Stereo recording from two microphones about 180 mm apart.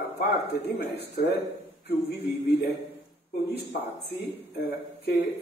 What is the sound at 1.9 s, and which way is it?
Music, 60° left (ahead or behind).